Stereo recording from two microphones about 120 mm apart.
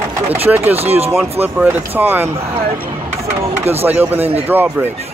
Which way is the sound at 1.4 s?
15° right (ahead or behind).